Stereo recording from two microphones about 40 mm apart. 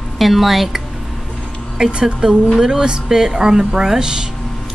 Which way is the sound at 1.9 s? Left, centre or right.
Right.